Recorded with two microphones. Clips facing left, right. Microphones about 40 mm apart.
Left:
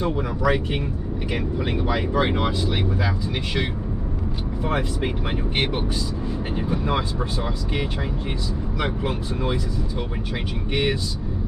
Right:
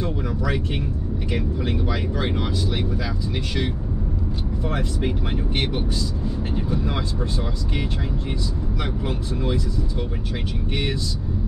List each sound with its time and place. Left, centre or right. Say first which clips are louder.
0.0 s speech: left 3 dB; centre
4.6 s speech: left 2 dB; left
8.7 s speech: left 4 dB; centre